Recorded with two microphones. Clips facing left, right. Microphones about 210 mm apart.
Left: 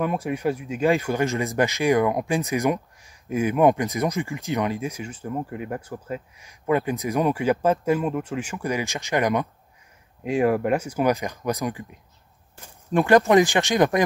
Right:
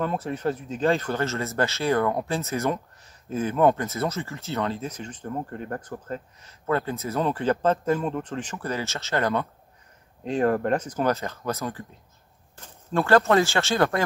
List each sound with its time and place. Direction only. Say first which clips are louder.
0.0 s speech: left 2 dB; 10° left (ahead or behind)